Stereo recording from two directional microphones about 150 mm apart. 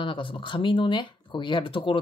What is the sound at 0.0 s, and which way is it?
Speech, 35° left (ahead or behind).